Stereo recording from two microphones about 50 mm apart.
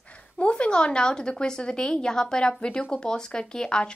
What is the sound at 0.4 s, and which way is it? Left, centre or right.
A woman's voice, left.